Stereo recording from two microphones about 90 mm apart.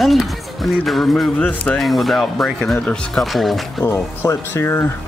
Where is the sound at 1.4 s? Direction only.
15° left (ahead or behind).